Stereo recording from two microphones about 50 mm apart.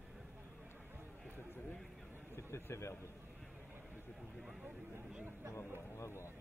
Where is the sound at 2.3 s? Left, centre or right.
Left.